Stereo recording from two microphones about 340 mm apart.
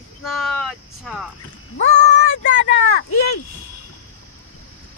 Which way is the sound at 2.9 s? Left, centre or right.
Left.